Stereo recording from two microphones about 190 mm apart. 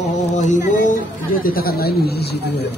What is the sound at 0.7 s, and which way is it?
Speech, 40° left (ahead or behind).